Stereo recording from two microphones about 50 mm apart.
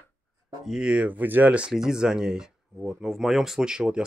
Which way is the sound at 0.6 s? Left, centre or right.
Centre.